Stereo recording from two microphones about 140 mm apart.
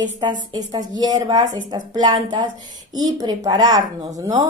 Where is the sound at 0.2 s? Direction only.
30° right (ahead or behind).